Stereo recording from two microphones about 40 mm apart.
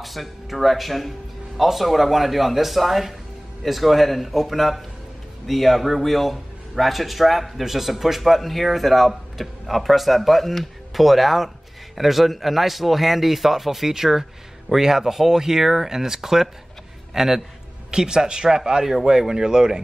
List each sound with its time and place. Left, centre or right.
0.0 s a man's voice: centre